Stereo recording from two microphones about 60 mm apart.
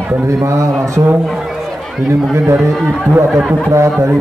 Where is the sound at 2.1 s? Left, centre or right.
Right.